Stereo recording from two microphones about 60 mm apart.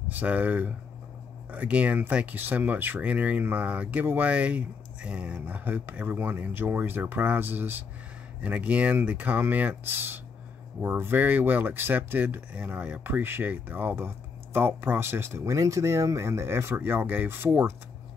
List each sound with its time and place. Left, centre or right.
0.1 s speech: right
4.0 s speech: right
4.3 s speech: right
5.6 s speech: right
8.4 s speech: right
13.0 s speech: right